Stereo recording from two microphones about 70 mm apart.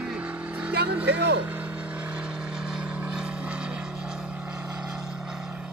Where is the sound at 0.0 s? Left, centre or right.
Centre.